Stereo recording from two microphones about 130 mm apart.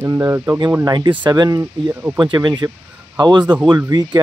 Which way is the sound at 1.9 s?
15° right (ahead or behind).